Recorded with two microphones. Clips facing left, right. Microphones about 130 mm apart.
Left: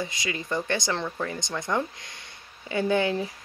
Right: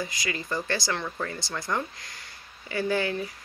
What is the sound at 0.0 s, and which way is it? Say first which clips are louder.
Speech: left 1 dB; 25° left (ahead or behind).